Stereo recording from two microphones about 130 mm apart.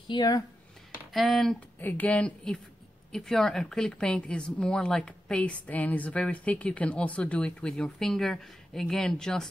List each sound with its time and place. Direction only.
0.1 s speech: 30° left (ahead or behind)
1.1 s speech: centre (ahead or behind)
1.8 s a woman's voice: 15° left (ahead or behind)